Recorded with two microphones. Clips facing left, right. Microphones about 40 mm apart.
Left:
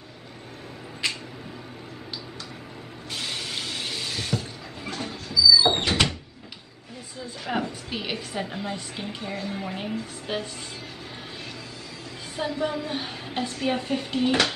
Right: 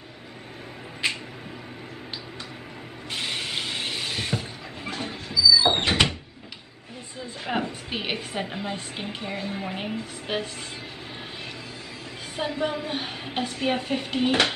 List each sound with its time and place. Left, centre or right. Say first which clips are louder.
1.0 s a sound: right 2 dB; right
3.1 s vehicle: right 2 dB; right
5.6 s door: right 1 dB; centre
7.4 s a woman's voice: even; right
12.4 s a woman's voice: even; right